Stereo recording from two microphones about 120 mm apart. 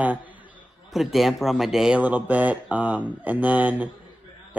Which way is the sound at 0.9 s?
Centre (ahead or behind).